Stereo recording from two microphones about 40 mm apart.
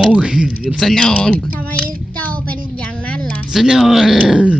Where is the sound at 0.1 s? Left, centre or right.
Right.